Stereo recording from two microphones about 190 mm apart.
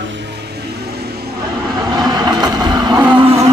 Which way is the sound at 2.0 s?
20° right (ahead or behind).